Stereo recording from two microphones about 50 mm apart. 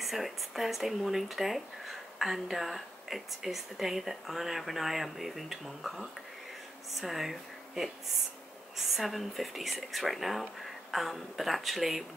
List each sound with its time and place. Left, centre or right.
0.0 s speech: centre